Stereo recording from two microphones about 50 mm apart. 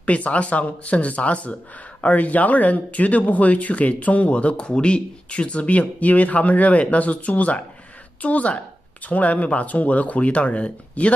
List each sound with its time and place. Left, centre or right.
0.0 s speech: left